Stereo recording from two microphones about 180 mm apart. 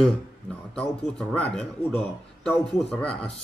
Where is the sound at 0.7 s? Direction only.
5° left (ahead or behind).